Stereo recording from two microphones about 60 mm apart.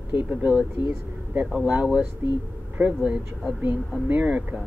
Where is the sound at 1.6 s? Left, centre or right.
Centre.